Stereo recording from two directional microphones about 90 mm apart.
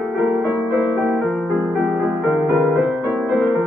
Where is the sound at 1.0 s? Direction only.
10° right (ahead or behind).